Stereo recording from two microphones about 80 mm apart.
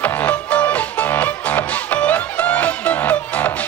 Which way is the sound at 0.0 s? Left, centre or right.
Centre.